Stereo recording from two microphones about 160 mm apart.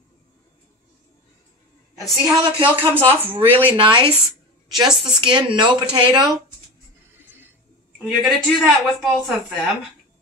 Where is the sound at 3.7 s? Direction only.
30° right (ahead or behind).